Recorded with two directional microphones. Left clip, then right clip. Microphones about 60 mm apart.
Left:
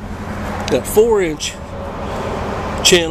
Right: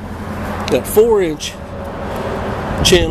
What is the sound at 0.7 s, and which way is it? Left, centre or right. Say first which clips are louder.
Speech: right 1 dB; centre.